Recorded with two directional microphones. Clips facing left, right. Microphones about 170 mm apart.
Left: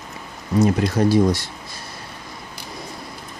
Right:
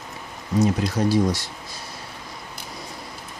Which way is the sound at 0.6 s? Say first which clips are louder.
Left 4 dB; 60° left (ahead or behind).